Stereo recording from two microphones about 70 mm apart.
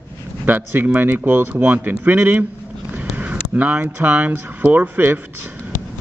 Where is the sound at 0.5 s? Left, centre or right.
Right.